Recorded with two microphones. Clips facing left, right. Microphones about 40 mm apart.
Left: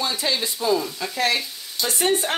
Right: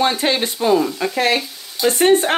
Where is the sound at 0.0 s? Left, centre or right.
Right.